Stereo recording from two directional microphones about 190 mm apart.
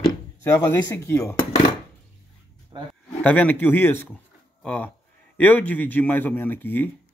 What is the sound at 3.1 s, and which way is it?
Speech, 10° left (ahead or behind).